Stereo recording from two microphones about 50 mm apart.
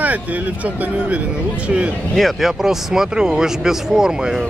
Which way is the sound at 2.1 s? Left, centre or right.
Centre.